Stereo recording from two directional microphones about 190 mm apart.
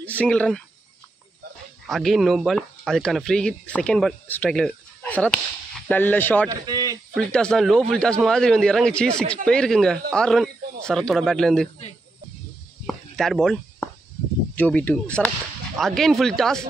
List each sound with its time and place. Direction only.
0.0 s speech: 5° left (ahead or behind)
1.9 s speech: centre (ahead or behind)
6.5 s speech: 20° right (ahead or behind)
7.2 s speech: 5° left (ahead or behind)
12.8 s chop: centre (ahead or behind)
14.5 s speech: 10° left (ahead or behind)